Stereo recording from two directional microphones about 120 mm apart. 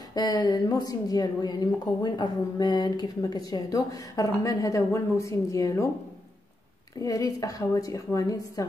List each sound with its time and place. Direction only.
0.1 s a woman's voice: 35° left (ahead or behind)
7.0 s a woman's voice: 25° left (ahead or behind)